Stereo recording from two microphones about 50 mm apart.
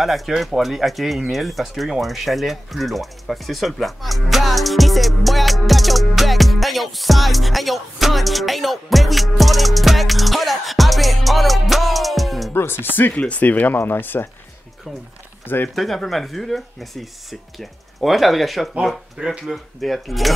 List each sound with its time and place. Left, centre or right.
0.0 s speech: centre
12.5 s speech: left
13.1 s speech: left
15.4 s speech: left
15.7 s speech: centre